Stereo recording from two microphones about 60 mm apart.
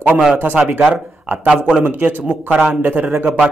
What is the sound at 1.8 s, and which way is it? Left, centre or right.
A man's voice, right.